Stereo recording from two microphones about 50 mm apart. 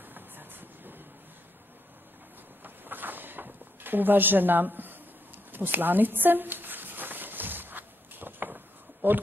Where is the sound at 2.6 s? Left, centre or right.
Right.